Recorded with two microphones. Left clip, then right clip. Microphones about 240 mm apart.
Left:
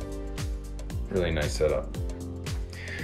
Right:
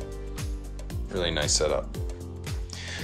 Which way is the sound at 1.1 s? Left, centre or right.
Centre.